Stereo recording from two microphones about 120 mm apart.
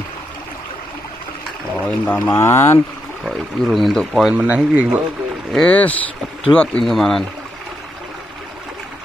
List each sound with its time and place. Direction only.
1.8 s speech: 10° left (ahead or behind)
3.3 s speech: centre (ahead or behind)
5.5 s speech: 10° left (ahead or behind)